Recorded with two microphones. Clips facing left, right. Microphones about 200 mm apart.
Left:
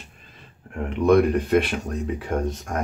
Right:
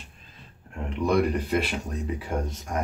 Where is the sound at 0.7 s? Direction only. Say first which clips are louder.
Left 7 dB; 60° left (ahead or behind).